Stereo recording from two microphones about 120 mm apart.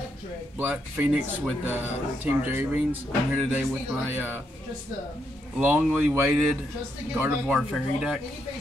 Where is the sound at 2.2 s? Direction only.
15° right (ahead or behind).